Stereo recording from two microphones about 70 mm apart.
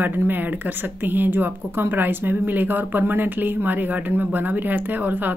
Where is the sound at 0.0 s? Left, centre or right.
Right.